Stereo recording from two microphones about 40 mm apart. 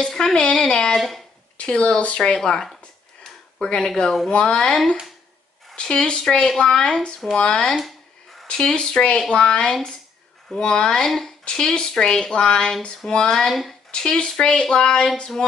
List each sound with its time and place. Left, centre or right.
0.0 s a sound: centre
0.3 s speech: centre
0.9 s speech: centre
1.6 s speech: left
2.3 s speech: centre
3.3 s a sound: centre
3.9 s speech: centre
4.3 s speech: left
5.8 s speech: left
8.5 s speech: centre
11.1 s speech: centre
11.4 s speech: centre
13.5 s speech: centre
13.9 s speech: centre